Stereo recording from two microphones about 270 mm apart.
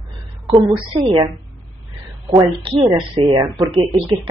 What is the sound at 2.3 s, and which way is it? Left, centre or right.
Speech, centre.